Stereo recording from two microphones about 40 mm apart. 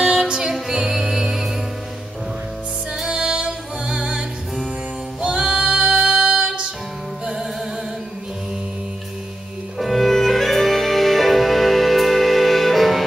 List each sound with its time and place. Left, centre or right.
0.0 s music: centre
3.1 s music: centre
9.8 s music: centre